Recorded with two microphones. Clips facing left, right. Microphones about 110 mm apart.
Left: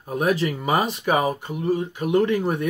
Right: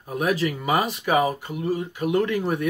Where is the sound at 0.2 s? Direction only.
25° left (ahead or behind).